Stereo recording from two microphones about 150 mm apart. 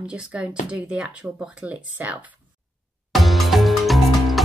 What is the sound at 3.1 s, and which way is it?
Music, centre (ahead or behind).